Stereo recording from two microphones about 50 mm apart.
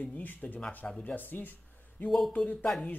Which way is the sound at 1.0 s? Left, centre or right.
Left.